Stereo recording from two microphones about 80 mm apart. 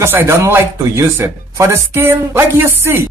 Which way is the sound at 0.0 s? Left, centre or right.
Right.